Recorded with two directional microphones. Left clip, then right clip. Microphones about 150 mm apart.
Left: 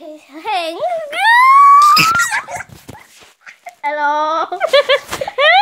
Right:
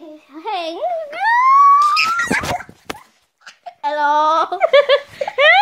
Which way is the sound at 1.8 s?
Centre (ahead or behind).